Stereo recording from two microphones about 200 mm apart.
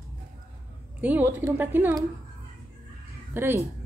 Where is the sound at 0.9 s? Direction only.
10° right (ahead or behind).